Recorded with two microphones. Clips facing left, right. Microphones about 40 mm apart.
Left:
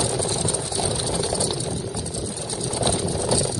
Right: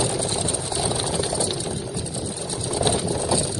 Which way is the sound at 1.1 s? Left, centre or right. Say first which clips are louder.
Even; centre.